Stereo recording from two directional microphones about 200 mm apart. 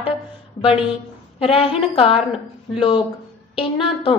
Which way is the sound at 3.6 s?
25° left (ahead or behind).